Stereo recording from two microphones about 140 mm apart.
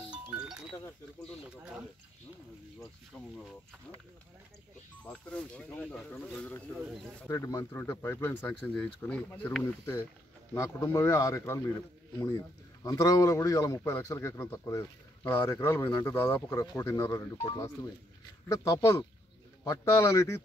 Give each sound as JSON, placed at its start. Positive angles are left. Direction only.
{"t": 0.1, "sound": "music", "side_deg": -5}
{"t": 3.1, "sound": "speech", "side_deg": 5}
{"t": 5.1, "sound": "speech", "side_deg": 5}
{"t": 7.2, "sound": "speech", "side_deg": 20}
{"t": 12.8, "sound": "speech", "side_deg": 25}